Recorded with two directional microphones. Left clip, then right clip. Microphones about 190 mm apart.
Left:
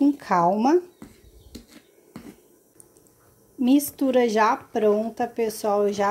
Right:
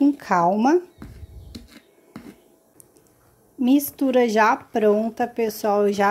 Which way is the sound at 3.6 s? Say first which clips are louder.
Right 1 dB; 5° right (ahead or behind).